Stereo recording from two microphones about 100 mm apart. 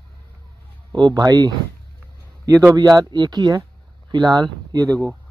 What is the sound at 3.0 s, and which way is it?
Speech, 45° right (ahead or behind).